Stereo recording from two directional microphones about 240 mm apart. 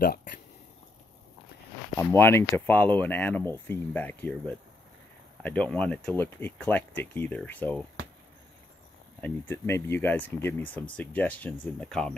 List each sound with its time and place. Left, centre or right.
0.0 s speech: left
2.0 s speech: centre
9.2 s speech: centre